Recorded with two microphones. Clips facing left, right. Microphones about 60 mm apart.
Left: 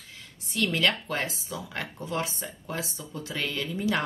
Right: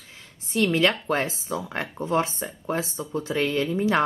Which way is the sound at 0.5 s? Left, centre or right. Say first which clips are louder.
Right 5 dB; right.